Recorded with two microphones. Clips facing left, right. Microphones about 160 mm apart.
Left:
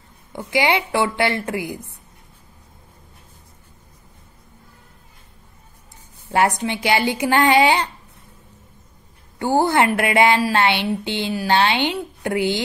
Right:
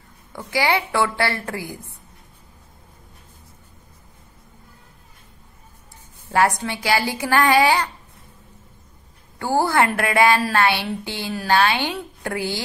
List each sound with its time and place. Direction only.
0.3 s a woman's voice: 20° left (ahead or behind)
6.3 s a woman's voice: 20° left (ahead or behind)
9.4 s a woman's voice: 20° left (ahead or behind)